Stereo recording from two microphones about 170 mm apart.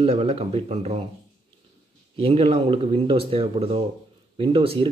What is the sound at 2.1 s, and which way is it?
Speech, 35° right (ahead or behind).